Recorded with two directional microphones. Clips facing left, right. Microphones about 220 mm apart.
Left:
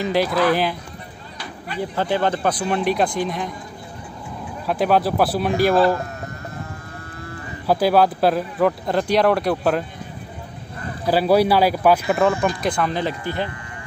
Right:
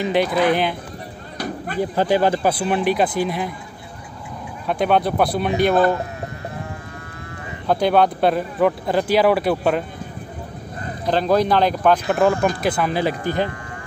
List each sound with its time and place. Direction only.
0.0 s a man's voice: centre (ahead or behind)
2.0 s a man's voice: 10° right (ahead or behind)
4.6 s a man's voice: centre (ahead or behind)
7.6 s a man's voice: 5° left (ahead or behind)
11.1 s a man's voice: 10° left (ahead or behind); by 13.1 s 10° right (ahead or behind)
13.2 s speech: 45° right (ahead or behind)